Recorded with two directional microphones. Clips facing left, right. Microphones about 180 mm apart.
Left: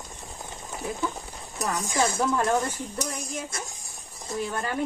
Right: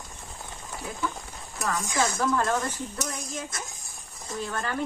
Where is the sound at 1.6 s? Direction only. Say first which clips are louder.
Left 1 dB; 20° left (ahead or behind).